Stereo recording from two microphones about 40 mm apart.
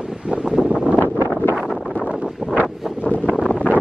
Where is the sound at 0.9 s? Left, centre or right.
Left.